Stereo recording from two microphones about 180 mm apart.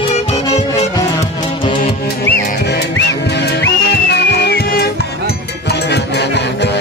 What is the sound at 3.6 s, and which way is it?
Music, 70° left (ahead or behind).